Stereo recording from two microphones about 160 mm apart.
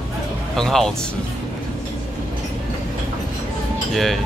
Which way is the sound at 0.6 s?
Centre (ahead or behind).